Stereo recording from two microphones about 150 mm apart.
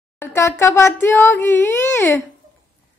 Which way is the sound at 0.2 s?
15° left (ahead or behind).